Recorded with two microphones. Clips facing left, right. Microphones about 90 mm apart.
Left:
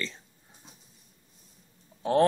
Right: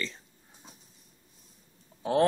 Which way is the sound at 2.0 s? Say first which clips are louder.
Left 2 dB; centre (ahead or behind).